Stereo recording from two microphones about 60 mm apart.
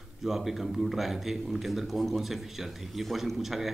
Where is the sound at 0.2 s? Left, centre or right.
Centre.